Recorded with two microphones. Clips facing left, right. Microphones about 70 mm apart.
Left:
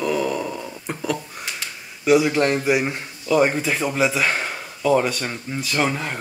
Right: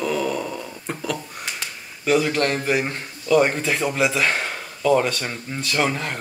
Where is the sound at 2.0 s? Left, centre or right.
Centre.